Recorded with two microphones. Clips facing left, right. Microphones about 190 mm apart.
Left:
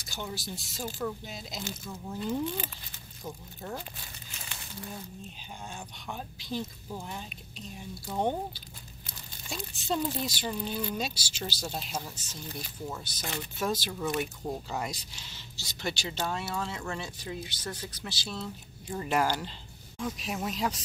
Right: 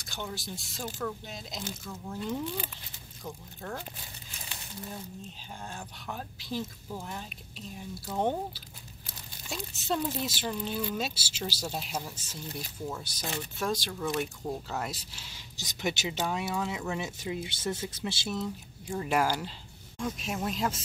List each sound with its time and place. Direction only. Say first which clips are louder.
0.1 s speech: even; 5° left (ahead or behind)
5.7 s speech: even; centre (ahead or behind)
9.5 s speech: even; centre (ahead or behind)
13.6 s speech: left 1 dB; 5° left (ahead or behind)
17.2 s speech: right 4 dB; 25° right (ahead or behind); by 20.8 s centre (ahead or behind)